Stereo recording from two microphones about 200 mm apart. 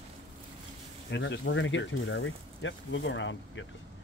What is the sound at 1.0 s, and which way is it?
Speech, 60° left (ahead or behind).